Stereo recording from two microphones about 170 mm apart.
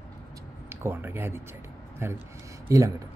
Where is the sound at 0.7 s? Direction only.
10° right (ahead or behind).